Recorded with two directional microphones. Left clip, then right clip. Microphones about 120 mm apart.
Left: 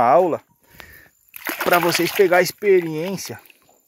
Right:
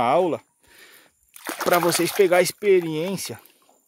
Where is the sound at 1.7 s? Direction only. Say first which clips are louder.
Left 2 dB; 15° right (ahead or behind).